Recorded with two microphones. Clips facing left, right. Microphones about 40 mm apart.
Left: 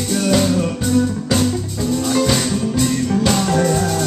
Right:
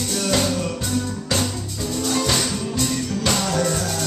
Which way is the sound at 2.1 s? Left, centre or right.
Centre.